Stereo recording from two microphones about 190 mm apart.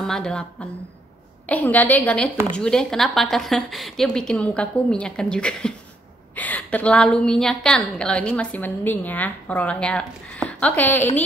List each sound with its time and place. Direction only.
0.0 s a woman's voice: 5° left (ahead or behind)